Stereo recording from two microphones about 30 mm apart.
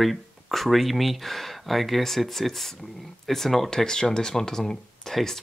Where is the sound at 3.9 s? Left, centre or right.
Left.